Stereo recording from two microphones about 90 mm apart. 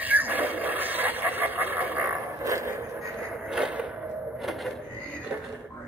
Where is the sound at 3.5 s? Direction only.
10° right (ahead or behind).